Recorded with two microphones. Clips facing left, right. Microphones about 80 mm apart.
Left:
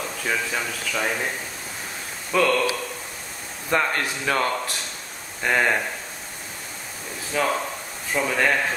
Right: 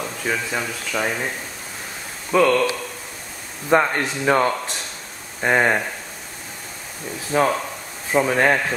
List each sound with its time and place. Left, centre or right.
0.0 s speech: centre
2.3 s speech: centre
3.7 s speech: centre
7.3 s speech: right